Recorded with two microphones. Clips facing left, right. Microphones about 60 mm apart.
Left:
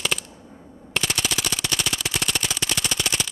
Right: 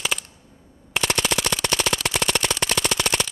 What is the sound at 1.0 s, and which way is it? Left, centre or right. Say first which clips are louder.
Machine gun: right 5 dB; right.